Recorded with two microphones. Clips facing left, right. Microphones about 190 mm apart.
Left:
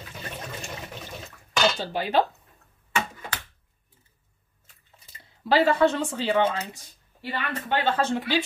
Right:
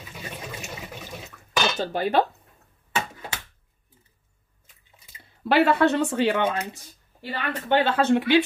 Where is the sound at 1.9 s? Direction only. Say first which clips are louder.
Right 2 dB; 50° right (ahead or behind).